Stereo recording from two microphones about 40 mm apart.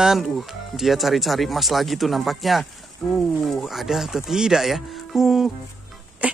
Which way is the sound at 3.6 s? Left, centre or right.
Centre.